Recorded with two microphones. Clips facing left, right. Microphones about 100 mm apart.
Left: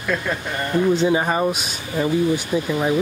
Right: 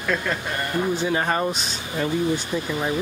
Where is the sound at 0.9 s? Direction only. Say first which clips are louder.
Left 8 dB; 20° left (ahead or behind).